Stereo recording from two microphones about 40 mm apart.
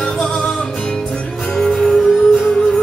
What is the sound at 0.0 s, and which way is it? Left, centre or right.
Music, centre.